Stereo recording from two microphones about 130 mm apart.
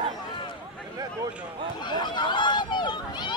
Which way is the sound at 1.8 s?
35° left (ahead or behind).